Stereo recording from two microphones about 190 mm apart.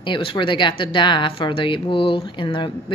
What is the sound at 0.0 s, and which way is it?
Speech, 25° left (ahead or behind).